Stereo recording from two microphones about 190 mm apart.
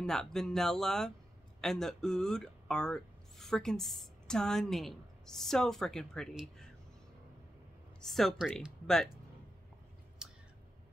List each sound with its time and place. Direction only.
0.0 s speech: 5° left (ahead or behind)
8.0 s speech: centre (ahead or behind)
10.2 s a sound: 5° right (ahead or behind)